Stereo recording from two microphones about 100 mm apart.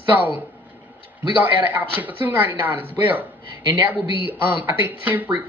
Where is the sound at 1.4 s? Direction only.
15° right (ahead or behind).